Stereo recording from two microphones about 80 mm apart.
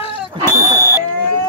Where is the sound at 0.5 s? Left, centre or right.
Right.